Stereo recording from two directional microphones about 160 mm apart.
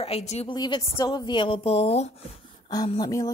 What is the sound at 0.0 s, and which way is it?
Speech, 40° left (ahead or behind).